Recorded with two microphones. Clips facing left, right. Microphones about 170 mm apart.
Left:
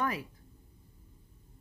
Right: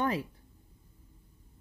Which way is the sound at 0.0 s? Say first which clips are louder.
Right 3 dB; 30° right (ahead or behind).